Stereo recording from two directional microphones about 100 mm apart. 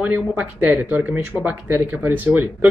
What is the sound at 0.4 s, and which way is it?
Speech, 15° right (ahead or behind).